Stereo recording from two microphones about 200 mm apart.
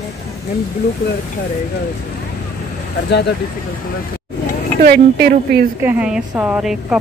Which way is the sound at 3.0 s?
55° left (ahead or behind).